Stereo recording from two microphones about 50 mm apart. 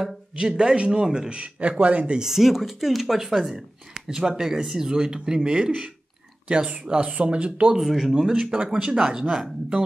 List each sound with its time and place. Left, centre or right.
0.4 s speech: centre
1.3 s speech: right
2.1 s speech: centre
7.8 s speech: centre